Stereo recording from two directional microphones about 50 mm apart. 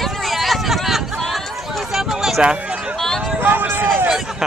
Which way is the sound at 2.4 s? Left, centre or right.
Centre.